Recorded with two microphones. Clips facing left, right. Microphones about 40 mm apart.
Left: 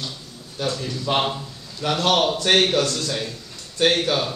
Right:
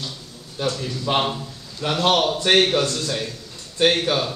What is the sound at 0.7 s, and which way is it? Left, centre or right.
Speech, centre.